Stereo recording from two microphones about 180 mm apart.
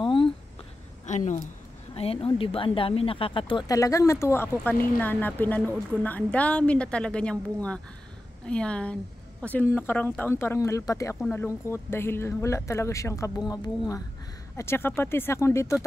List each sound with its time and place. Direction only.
0.0 s a sound: 25° left (ahead or behind)
1.0 s speech: 40° left (ahead or behind)
2.0 s a woman's voice: 30° left (ahead or behind); by 15.7 s 15° left (ahead or behind)